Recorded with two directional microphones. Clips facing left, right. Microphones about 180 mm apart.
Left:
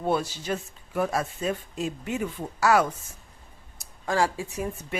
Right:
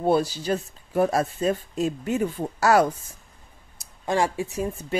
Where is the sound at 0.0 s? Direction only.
35° right (ahead or behind).